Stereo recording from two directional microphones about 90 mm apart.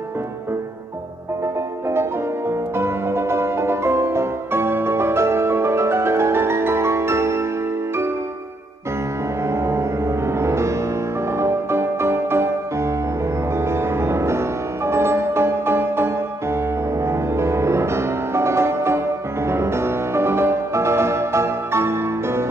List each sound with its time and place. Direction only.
2.8 s music: 30° right (ahead or behind)
9.5 s music: 30° right (ahead or behind)
13.7 s music: 30° right (ahead or behind)